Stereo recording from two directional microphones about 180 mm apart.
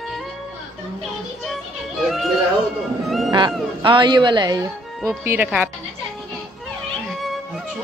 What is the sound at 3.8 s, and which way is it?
Speech, 25° right (ahead or behind).